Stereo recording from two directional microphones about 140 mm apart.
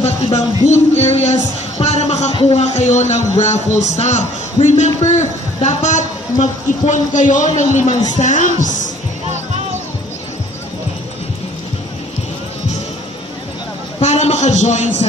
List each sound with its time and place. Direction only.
0.7 s speech: 55° left (ahead or behind)
13.9 s speech: 50° left (ahead or behind)